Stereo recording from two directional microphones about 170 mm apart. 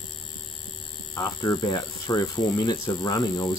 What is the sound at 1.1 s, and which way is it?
Speech, 20° left (ahead or behind).